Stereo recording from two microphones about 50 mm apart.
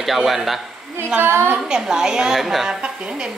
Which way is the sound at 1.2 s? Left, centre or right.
Right.